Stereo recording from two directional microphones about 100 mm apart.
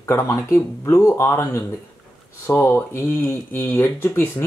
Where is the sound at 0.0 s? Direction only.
25° left (ahead or behind).